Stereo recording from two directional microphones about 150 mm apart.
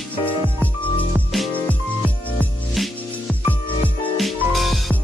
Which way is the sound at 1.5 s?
10° left (ahead or behind).